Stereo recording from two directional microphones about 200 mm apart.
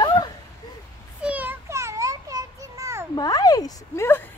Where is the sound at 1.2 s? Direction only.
5° right (ahead or behind).